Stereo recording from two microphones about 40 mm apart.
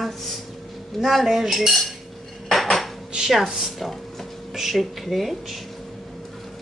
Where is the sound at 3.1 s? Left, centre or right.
Centre.